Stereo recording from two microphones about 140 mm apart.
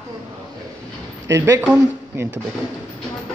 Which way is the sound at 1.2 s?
20° right (ahead or behind).